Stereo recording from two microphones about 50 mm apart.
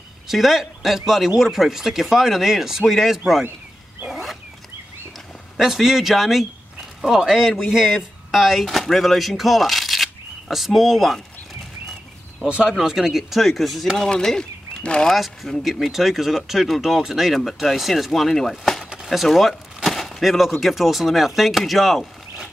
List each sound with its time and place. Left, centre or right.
0.3 s speech: centre
4.1 s wild animals: centre
5.6 s speech: centre
12.4 s speech: right
12.7 s speech: centre
14.1 s speech: centre
15.0 s speech: centre
19.0 s a sound: centre
20.6 s speech: centre